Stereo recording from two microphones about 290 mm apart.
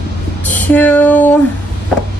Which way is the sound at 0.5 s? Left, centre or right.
Centre.